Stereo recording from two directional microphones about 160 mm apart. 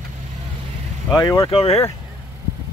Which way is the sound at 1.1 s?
25° left (ahead or behind).